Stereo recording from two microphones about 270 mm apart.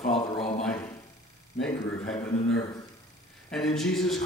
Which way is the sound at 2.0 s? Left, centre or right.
Centre.